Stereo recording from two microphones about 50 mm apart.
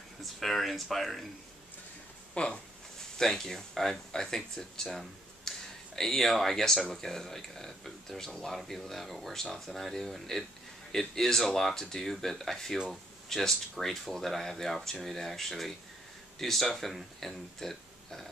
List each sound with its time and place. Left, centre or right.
0.2 s speech: centre
2.3 s speech: left
3.2 s speech: centre
5.5 s a sound: centre
5.9 s speech: centre